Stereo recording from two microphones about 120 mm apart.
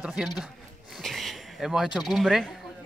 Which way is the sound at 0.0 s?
5° right (ahead or behind).